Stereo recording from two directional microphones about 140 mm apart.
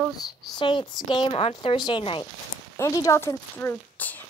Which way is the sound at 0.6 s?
35° left (ahead or behind).